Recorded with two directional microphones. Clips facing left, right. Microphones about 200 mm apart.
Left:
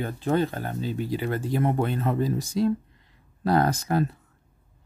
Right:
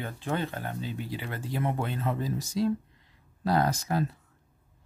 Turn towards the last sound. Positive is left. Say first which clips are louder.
# left 4 dB
turn(degrees=55)  # may be behind; listen again after turning